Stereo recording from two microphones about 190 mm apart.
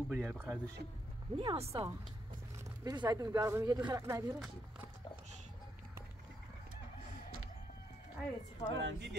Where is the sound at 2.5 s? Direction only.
20° right (ahead or behind).